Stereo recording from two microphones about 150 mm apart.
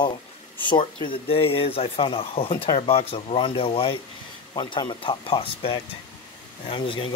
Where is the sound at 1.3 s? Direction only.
40° left (ahead or behind).